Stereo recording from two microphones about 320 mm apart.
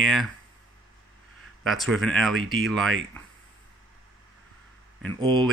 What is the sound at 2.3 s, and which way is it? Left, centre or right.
Speech, right.